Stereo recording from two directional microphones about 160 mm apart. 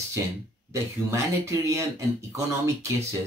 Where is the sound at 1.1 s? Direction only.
20° right (ahead or behind).